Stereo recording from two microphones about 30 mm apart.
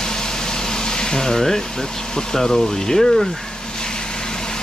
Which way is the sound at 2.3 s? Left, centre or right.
Centre.